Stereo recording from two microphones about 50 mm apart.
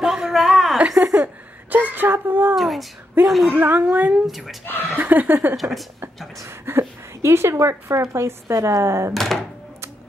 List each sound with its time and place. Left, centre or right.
0.0 s a sound: centre
0.9 s a sound: right
1.2 s a sound: right
2.5 s speech: centre
3.5 s speech: right
3.8 s speech: right
4.3 s speech: centre
4.9 s speech: right
5.6 s speech: centre
6.4 s a woman's voice: right
9.1 s speech: centre